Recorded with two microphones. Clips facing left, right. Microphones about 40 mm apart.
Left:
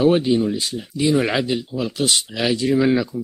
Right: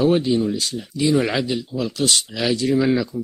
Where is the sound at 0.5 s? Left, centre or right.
Centre.